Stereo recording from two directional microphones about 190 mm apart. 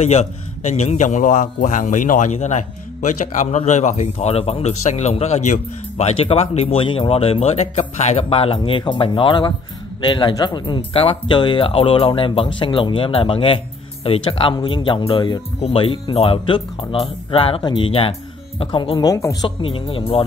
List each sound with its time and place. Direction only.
0.0 s a man's voice: 35° left (ahead or behind); by 19.5 s 20° left (ahead or behind)
19.6 s speech: 30° left (ahead or behind)